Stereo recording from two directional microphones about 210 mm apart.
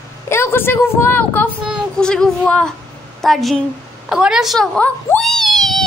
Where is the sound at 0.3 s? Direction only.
10° left (ahead or behind).